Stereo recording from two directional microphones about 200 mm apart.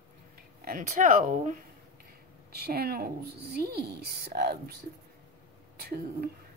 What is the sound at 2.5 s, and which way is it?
Speech, 50° right (ahead or behind).